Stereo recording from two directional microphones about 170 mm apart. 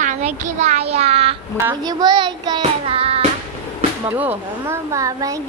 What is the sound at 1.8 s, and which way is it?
Speech, 25° right (ahead or behind).